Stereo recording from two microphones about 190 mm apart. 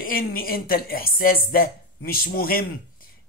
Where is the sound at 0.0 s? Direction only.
50° left (ahead or behind).